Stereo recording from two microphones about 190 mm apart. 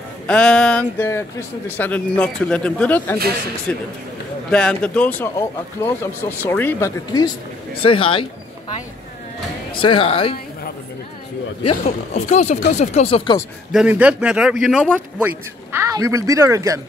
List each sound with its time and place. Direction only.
0.3 s speech: 5° left (ahead or behind)
7.8 s speech: 30° left (ahead or behind)
9.8 s speech: 30° left (ahead or behind)
11.6 s speech: 35° left (ahead or behind)
13.7 s speech: 5° right (ahead or behind)